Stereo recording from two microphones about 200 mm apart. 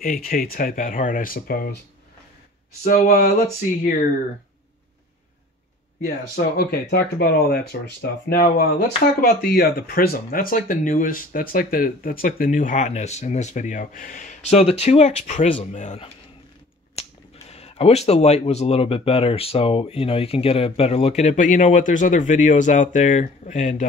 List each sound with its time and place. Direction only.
0.0 s speech: 45° left (ahead or behind)
2.8 s speech: 45° left (ahead or behind)
6.0 s speech: 50° left (ahead or behind)
17.5 s speech: 30° left (ahead or behind)